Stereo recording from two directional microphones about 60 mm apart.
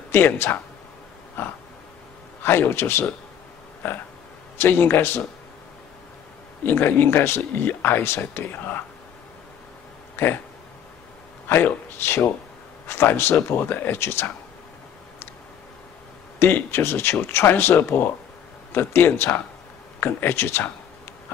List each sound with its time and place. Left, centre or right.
0.1 s speech: left
6.6 s speech: left
10.1 s speech: left
11.4 s speech: left
16.3 s speech: left